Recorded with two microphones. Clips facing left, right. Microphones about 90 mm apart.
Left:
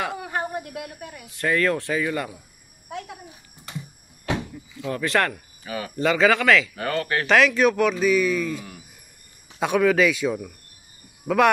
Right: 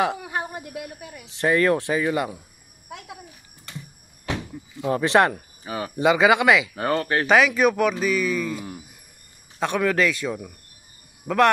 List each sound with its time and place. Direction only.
0.3 s speech: 5° right (ahead or behind)
1.2 s speech: 25° right (ahead or behind)
4.8 s speech: 25° right (ahead or behind)
5.9 s speech: 15° right (ahead or behind)
6.7 s speech: 30° right (ahead or behind)
7.2 s speech: 10° right (ahead or behind)